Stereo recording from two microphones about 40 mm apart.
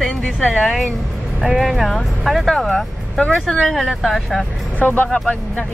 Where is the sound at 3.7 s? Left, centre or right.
Centre.